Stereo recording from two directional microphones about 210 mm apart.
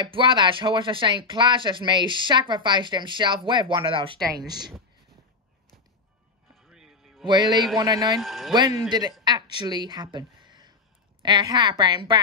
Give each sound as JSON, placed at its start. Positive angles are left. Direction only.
{"t": 0.1, "sound": "speech", "side_deg": -25}
{"t": 6.5, "sound": "music", "side_deg": 0}
{"t": 7.2, "sound": "speech", "side_deg": -20}
{"t": 8.2, "sound": "speech", "side_deg": 0}
{"t": 8.5, "sound": "a woman's voice", "side_deg": -20}